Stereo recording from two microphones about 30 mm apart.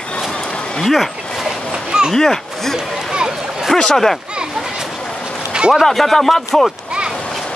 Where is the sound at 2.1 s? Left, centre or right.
Centre.